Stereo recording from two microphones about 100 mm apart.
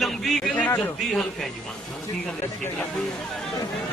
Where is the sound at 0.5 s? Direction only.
15° left (ahead or behind).